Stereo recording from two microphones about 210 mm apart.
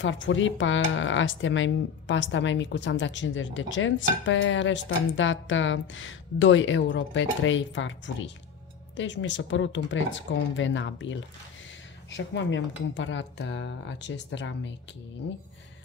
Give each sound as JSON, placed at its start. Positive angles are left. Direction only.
{"t": 0.0, "sound": "speech", "side_deg": 65}